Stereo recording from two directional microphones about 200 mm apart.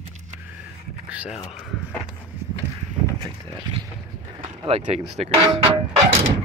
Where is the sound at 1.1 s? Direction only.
5° right (ahead or behind).